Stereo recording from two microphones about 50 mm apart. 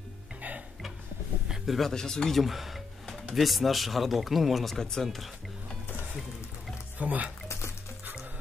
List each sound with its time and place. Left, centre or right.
1.7 s speech: centre
2.4 s a sound: centre
3.3 s speech: centre
7.0 s speech: right